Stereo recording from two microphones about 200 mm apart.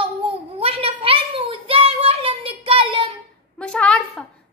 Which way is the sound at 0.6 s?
30° right (ahead or behind).